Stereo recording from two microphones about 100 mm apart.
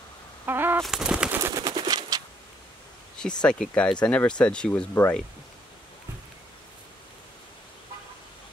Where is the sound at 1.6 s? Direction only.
45° right (ahead or behind).